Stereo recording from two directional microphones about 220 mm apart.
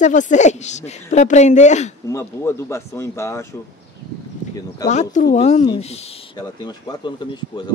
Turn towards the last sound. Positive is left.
turn(degrees=20)  # may be behind; listen again after turning